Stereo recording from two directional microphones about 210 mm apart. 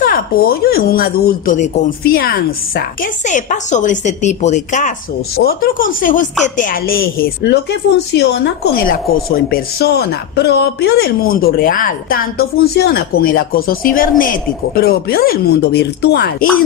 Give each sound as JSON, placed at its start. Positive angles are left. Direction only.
{"t": 0.0, "sound": "speech", "side_deg": 45}
{"t": 3.3, "sound": "speech", "side_deg": 35}
{"t": 8.8, "sound": "speech", "side_deg": 45}